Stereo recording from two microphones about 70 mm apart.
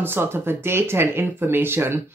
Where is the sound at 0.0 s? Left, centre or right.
Right.